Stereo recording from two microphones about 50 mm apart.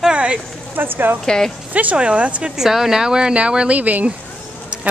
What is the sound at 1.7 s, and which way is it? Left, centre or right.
Speech, right.